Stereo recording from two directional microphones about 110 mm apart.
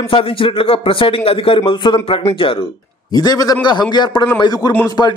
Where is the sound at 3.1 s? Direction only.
35° left (ahead or behind).